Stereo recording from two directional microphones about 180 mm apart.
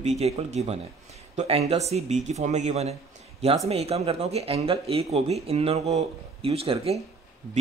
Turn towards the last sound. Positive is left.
turn(degrees=-35)  # may be behind; listen again after turning